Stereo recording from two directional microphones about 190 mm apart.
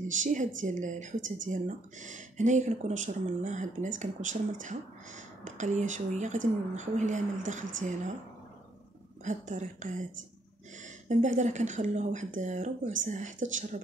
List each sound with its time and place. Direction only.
0.0 s speech: 40° right (ahead or behind)
9.2 s speech: 40° right (ahead or behind)
11.1 s speech: 40° right (ahead or behind)